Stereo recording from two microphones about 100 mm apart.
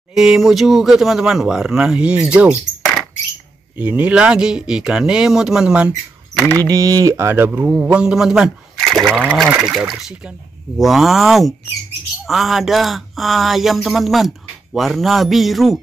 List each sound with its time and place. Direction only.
0.1 s speech: 5° right (ahead or behind)
3.7 s speech: 15° right (ahead or behind)
6.7 s speech: 35° right (ahead or behind); by 15.8 s centre (ahead or behind)